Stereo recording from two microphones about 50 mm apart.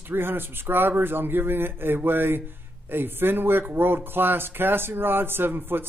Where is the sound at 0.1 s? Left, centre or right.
Right.